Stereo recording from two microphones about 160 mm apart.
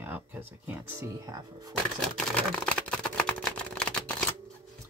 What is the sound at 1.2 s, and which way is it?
Speech, 20° right (ahead or behind).